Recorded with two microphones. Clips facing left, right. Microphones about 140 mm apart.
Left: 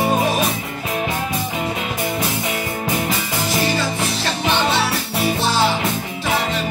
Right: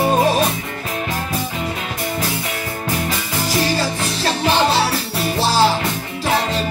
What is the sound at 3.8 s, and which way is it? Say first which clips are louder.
Music: right 1 dB; 35° right (ahead or behind).